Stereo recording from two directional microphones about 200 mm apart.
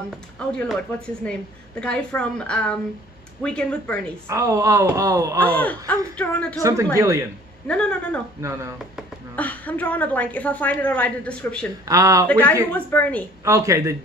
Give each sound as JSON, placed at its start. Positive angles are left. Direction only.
{"t": 0.5, "sound": "a woman's voice", "side_deg": 5}
{"t": 4.3, "sound": "speech", "side_deg": -15}
{"t": 5.6, "sound": "speech", "side_deg": 10}
{"t": 7.0, "sound": "speech", "side_deg": -15}
{"t": 7.6, "sound": "a woman's voice", "side_deg": 5}
{"t": 8.4, "sound": "speech", "side_deg": -15}
{"t": 8.7, "sound": "speech", "side_deg": 0}
{"t": 11.8, "sound": "speech", "side_deg": -15}
{"t": 12.3, "sound": "speech", "side_deg": 10}
{"t": 13.4, "sound": "speech", "side_deg": -15}